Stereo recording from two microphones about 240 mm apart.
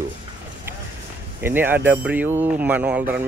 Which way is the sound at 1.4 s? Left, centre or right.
Centre.